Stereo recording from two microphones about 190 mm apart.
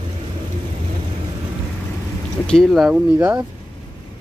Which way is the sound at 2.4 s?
5° left (ahead or behind).